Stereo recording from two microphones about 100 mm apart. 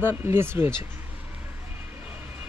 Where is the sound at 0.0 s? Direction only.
20° right (ahead or behind).